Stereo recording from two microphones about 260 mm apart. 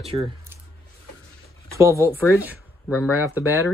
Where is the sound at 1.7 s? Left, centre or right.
Centre.